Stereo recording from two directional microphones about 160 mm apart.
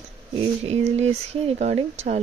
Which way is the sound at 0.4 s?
40° right (ahead or behind).